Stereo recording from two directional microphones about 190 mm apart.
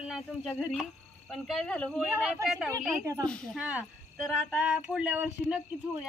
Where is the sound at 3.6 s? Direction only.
5° right (ahead or behind).